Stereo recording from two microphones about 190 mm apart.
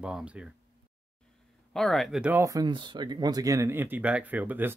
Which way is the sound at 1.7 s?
Centre (ahead or behind).